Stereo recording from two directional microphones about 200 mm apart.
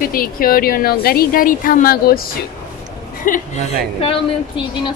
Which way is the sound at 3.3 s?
35° left (ahead or behind).